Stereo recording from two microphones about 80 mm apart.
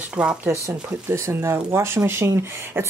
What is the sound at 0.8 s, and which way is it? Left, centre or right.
Speech, right.